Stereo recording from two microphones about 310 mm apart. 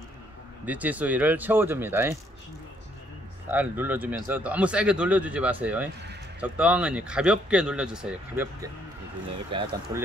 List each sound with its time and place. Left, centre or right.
0.7 s speech: centre
3.4 s speech: centre
9.5 s speech: centre